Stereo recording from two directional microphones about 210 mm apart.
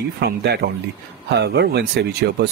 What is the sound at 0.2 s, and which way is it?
Speech, 50° right (ahead or behind).